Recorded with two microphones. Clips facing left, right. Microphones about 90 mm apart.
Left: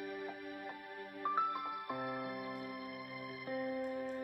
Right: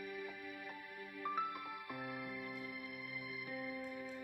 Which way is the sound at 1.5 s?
55° left (ahead or behind).